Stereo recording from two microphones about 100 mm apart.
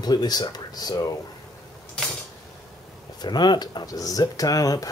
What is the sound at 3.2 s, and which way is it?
Speech, 45° left (ahead or behind).